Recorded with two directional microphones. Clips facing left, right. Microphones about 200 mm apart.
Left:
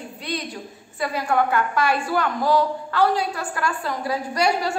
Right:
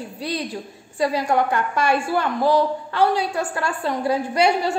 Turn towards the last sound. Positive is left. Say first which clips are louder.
# right 3 dB
turn(degrees=-25)  # may be behind; listen again after turning